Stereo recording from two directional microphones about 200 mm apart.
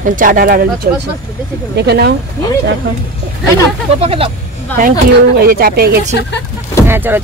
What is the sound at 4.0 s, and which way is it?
Speech, 30° right (ahead or behind).